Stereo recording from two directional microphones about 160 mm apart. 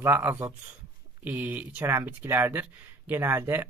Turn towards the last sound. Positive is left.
turn(degrees=-15)  # may be behind; listen again after turning